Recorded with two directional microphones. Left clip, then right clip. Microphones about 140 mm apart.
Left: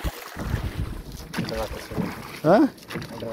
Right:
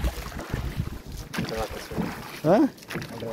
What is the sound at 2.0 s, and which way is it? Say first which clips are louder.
Boat: left 1 dB; 50° left (ahead or behind).